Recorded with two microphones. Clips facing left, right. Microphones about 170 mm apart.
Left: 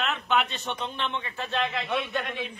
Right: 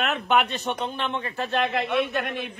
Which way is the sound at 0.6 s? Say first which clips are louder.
Right 4 dB; 40° right (ahead or behind).